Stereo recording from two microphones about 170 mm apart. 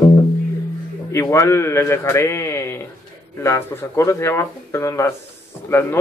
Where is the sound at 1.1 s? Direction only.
15° left (ahead or behind).